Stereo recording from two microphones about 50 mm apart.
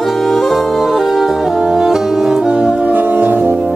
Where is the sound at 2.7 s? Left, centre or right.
Right.